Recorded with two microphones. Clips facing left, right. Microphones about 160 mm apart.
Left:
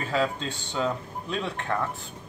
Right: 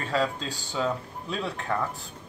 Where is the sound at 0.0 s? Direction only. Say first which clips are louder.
Left 1 dB; centre (ahead or behind).